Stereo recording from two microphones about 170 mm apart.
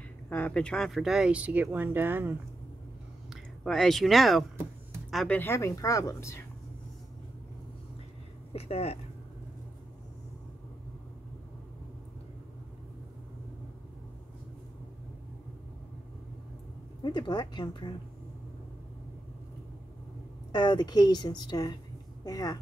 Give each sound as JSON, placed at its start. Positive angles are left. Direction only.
{"t": 0.3, "sound": "speech", "side_deg": 5}
{"t": 3.6, "sound": "speech", "side_deg": 0}
{"t": 8.5, "sound": "speech", "side_deg": 35}
{"t": 17.0, "sound": "a woman's voice", "side_deg": 25}
{"t": 20.5, "sound": "a woman's voice", "side_deg": 25}